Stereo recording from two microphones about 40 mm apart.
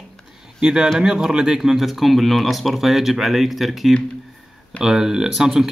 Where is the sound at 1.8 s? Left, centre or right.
Centre.